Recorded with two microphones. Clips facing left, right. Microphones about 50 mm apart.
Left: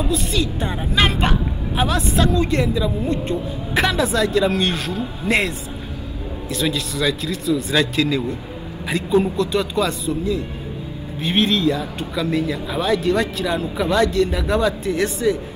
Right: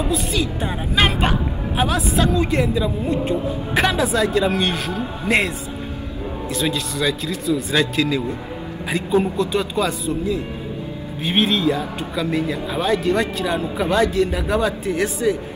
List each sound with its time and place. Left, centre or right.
0.1 s a man's voice: centre
6.5 s a man's voice: centre